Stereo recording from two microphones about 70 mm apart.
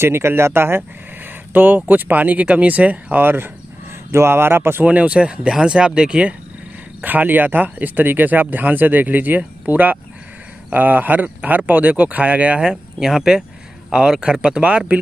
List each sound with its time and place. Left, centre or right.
0.0 s speech: right
4.8 s speech: centre
7.0 s speech: right